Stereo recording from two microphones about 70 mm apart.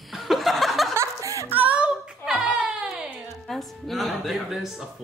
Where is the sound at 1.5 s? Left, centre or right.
Right.